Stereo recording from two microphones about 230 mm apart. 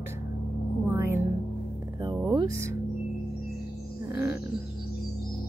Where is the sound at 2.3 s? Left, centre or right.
Centre.